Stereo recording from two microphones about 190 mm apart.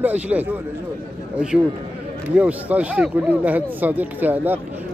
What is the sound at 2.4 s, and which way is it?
A man's voice, 5° right (ahead or behind).